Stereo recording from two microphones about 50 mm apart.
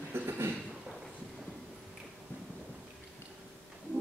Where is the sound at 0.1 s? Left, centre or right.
Right.